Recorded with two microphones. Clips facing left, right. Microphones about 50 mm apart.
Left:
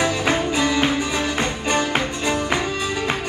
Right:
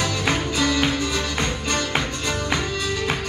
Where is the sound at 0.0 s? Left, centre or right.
Left.